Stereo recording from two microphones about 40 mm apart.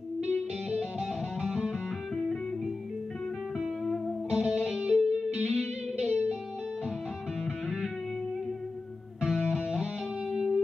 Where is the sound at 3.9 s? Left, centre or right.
Centre.